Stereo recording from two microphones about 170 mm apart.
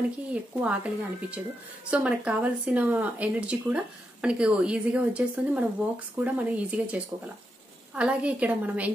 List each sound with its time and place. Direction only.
0.3 s speech: 5° right (ahead or behind)